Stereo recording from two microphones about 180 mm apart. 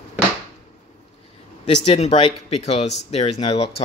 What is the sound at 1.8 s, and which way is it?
Speech, 35° left (ahead or behind).